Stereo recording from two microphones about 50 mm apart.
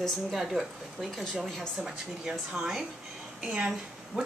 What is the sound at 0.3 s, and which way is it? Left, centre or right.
A woman's voice, centre.